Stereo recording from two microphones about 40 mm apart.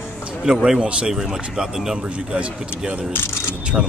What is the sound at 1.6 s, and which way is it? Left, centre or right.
Speech, right.